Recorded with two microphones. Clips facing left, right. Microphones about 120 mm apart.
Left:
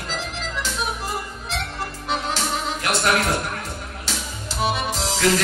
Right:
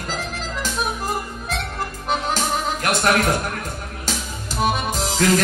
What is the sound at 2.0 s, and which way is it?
Music, 45° right (ahead or behind).